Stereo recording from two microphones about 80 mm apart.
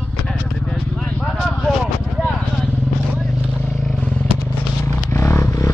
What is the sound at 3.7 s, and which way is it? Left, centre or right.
Vehicle, centre.